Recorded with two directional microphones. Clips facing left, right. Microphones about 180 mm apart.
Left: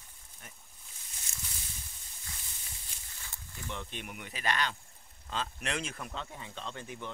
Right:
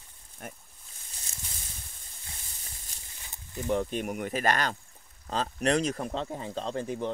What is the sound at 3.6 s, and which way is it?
Speech, 40° right (ahead or behind).